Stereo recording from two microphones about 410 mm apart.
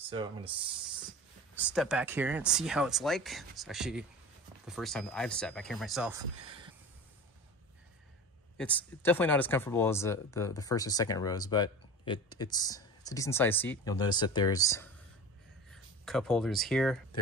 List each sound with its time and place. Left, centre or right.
0.1 s speech: centre
1.5 s speech: centre
8.5 s speech: centre